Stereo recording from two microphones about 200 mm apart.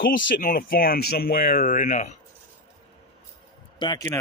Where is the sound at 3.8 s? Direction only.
20° left (ahead or behind).